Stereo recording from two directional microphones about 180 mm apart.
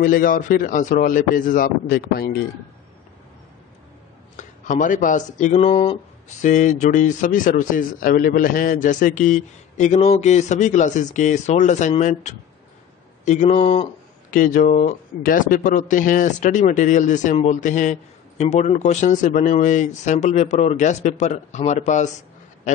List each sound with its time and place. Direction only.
0.0 s speech: 50° left (ahead or behind)
1.9 s speech: 60° left (ahead or behind)
4.4 s speech: 45° left (ahead or behind)
14.3 s speech: 50° left (ahead or behind)